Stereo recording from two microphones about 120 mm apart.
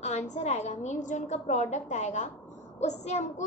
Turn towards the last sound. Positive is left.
turn(degrees=75)  # may be behind; listen again after turning